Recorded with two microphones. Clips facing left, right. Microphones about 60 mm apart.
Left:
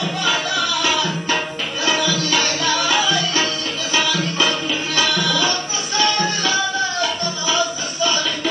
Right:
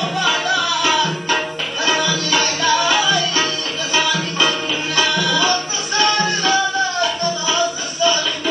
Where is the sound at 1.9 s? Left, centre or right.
Right.